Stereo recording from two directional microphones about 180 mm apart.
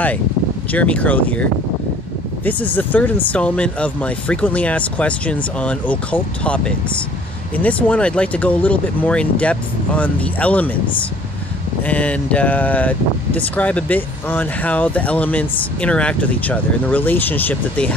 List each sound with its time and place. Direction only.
0.7 s speech: 10° left (ahead or behind)
11.8 s speech: 10° left (ahead or behind)